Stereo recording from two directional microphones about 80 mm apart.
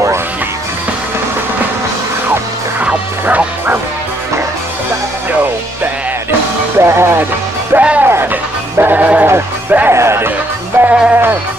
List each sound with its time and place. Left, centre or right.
2.8 s music: centre
6.8 s music: right
7.7 s music: centre; by 10.3 s right
10.8 s music: right